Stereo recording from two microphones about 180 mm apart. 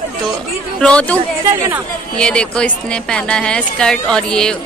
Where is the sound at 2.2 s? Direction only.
5° left (ahead or behind).